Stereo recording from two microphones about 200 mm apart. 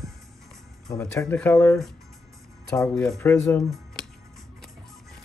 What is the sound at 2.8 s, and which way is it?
Speech, 5° left (ahead or behind).